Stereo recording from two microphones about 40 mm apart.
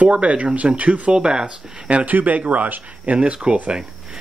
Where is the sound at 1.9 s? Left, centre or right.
Right.